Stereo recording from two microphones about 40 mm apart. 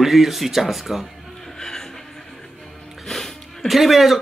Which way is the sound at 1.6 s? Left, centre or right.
Centre.